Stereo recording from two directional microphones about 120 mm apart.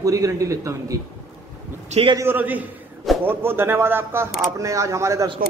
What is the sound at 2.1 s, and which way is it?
A man's voice, 20° right (ahead or behind).